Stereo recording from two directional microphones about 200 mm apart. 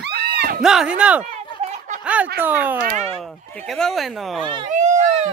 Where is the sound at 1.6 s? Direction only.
35° right (ahead or behind).